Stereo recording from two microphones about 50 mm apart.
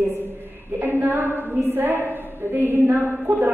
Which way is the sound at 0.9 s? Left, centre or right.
Right.